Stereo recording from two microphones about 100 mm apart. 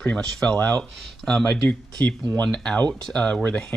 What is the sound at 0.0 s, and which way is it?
Speech, 10° left (ahead or behind).